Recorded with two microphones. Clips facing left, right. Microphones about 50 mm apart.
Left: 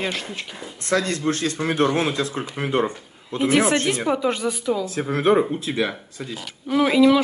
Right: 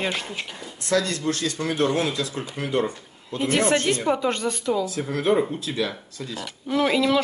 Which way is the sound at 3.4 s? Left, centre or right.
Centre.